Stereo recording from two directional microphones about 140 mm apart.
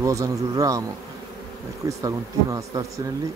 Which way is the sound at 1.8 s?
25° right (ahead or behind).